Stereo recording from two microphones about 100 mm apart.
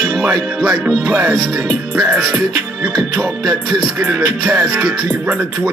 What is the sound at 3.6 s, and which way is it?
Speech, 10° right (ahead or behind).